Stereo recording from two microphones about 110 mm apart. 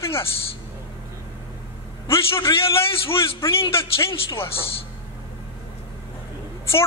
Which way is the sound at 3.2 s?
25° left (ahead or behind).